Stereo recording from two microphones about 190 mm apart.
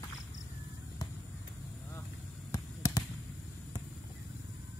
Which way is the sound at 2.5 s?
20° left (ahead or behind).